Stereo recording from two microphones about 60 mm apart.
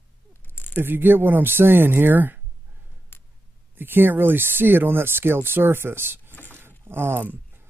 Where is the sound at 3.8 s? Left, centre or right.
Right.